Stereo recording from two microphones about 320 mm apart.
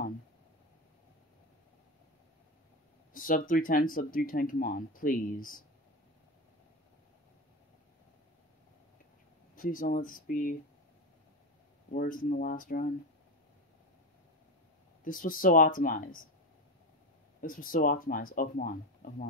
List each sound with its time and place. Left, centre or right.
3.1 s speech: left
9.6 s speech: left
11.9 s speech: left
15.0 s speech: left
17.4 s speech: left